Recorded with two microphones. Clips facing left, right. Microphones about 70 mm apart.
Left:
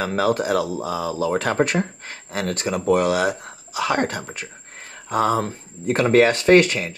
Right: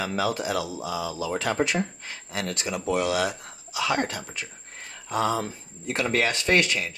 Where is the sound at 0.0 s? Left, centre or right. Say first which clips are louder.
Left 6 dB; left.